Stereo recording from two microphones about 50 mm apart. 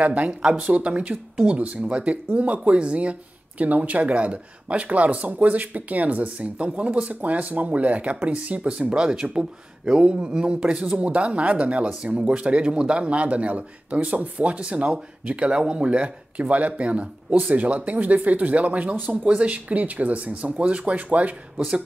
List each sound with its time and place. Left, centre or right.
0.0 s speech: right
11.0 s speech: right